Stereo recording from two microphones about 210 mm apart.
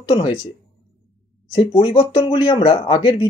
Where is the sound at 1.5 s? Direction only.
25° left (ahead or behind).